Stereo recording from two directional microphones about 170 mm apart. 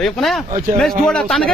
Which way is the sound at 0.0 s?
Centre (ahead or behind).